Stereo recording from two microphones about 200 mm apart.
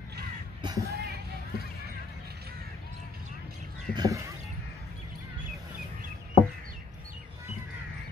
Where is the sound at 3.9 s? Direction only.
20° right (ahead or behind).